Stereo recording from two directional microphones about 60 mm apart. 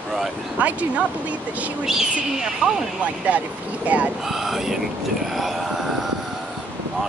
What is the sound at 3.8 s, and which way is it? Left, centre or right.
Speech, right.